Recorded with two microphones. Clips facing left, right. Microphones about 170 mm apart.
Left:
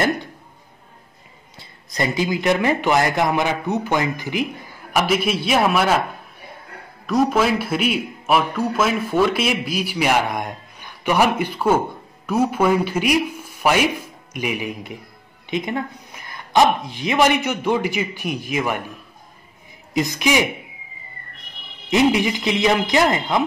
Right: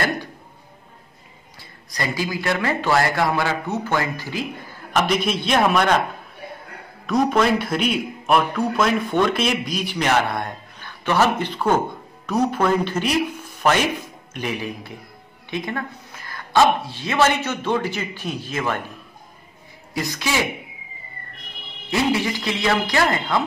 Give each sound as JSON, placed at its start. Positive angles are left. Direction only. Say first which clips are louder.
{"t": 1.6, "sound": "speech", "louder": "left 4 dB", "side_deg": 25}
{"t": 4.9, "sound": "a man's voice", "louder": "left 1 dB", "side_deg": 5}
{"t": 7.1, "sound": "a man's voice", "louder": "even", "side_deg": 0}
{"t": 19.9, "sound": "speech", "louder": "left 5 dB", "side_deg": 20}
{"t": 21.9, "sound": "speech", "louder": "left 4 dB", "side_deg": 15}